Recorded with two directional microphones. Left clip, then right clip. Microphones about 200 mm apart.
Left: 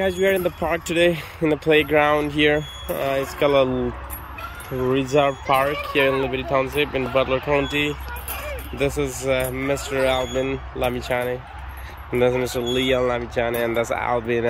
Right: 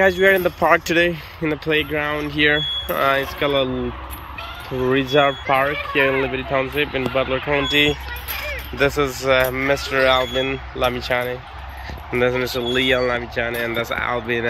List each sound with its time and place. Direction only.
0.0 s speech: 5° left (ahead or behind)
4.9 s speech: centre (ahead or behind)
8.3 s a sound: 55° left (ahead or behind)
8.7 s speech: 10° left (ahead or behind)